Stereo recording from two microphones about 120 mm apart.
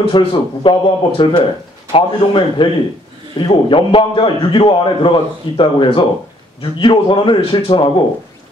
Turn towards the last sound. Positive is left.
turn(degrees=50)  # may be behind; listen again after turning